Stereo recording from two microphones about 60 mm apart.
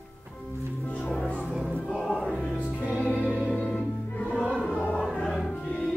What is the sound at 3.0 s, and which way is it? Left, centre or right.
Choir, left.